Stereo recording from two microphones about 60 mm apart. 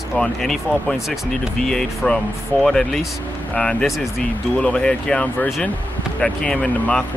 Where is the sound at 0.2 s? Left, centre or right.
Centre.